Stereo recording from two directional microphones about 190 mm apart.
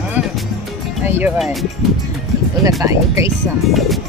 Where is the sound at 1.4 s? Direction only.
Centre (ahead or behind).